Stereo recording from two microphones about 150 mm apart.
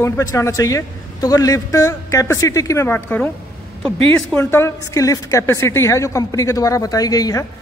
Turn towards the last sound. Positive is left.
turn(degrees=25)  # may be behind; listen again after turning